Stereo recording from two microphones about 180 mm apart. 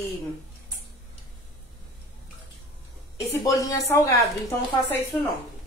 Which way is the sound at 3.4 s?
20° left (ahead or behind).